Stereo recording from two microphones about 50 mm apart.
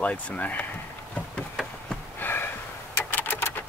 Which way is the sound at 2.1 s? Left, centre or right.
Left.